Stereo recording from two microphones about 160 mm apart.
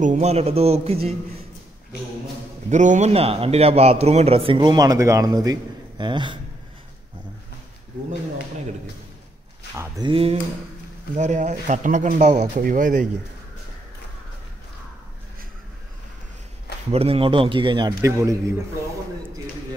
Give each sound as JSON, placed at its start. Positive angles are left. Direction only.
{"t": 0.0, "sound": "a man's voice", "side_deg": -50}
{"t": 2.7, "sound": "a man's voice", "side_deg": -50}
{"t": 9.8, "sound": "speech", "side_deg": -25}
{"t": 11.1, "sound": "speech", "side_deg": -45}
{"t": 16.9, "sound": "a man's voice", "side_deg": -35}